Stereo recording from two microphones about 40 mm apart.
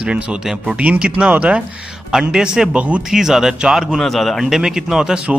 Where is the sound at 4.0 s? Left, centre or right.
Centre.